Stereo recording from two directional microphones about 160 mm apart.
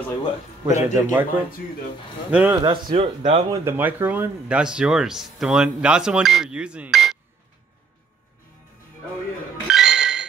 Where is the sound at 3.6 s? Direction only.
10° right (ahead or behind).